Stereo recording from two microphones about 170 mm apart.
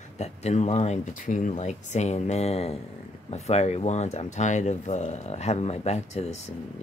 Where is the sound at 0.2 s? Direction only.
40° left (ahead or behind).